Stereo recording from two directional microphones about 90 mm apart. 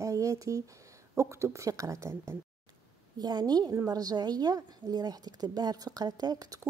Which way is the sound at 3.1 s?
50° right (ahead or behind).